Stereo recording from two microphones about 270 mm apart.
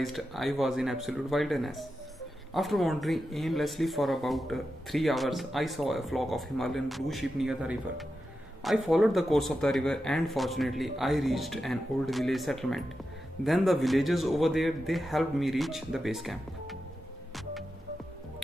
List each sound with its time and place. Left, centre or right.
0.0 s speech: centre